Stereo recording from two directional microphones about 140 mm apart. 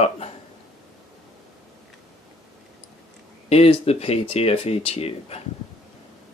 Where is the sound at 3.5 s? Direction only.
45° left (ahead or behind).